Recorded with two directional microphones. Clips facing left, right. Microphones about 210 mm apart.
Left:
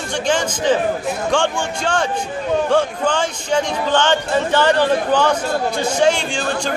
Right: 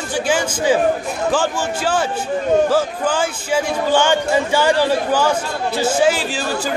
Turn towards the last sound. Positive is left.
turn(degrees=-5)  # may be behind; listen again after turning